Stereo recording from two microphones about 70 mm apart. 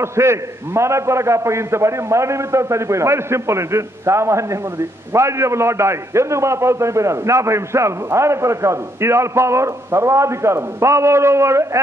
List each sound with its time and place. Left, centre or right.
0.0 s a man's voice: right